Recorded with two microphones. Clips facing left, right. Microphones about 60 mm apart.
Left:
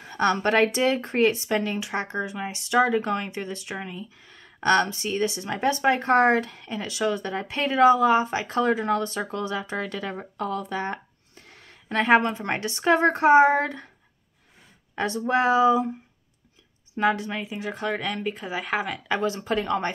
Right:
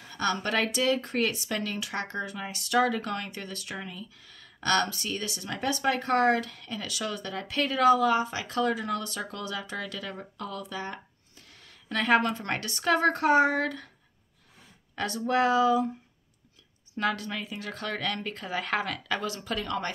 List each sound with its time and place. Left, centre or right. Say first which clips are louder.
0.0 s speech: left 7 dB; left
15.0 s speech: left 3 dB; left
16.9 s speech: left 6 dB; left
19.0 s speech: left 6 dB; left